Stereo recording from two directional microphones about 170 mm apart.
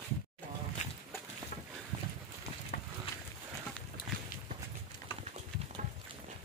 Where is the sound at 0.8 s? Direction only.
45° left (ahead or behind).